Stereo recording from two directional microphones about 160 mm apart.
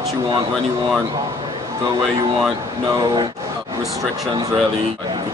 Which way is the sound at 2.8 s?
25° right (ahead or behind).